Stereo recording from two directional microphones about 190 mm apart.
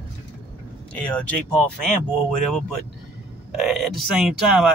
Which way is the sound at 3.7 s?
Centre (ahead or behind).